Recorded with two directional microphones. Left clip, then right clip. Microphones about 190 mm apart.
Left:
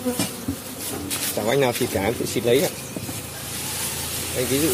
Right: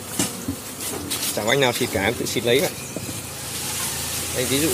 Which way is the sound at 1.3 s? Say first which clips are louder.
Right 1 dB; 10° left (ahead or behind).